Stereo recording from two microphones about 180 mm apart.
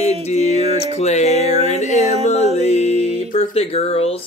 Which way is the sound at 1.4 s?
35° right (ahead or behind).